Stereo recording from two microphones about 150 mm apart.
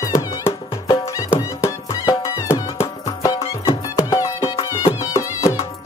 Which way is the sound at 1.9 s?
30° left (ahead or behind).